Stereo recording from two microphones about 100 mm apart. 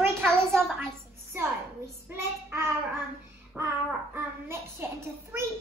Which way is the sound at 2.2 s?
25° right (ahead or behind).